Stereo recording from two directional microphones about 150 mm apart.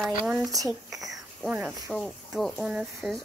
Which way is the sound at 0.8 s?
Centre (ahead or behind).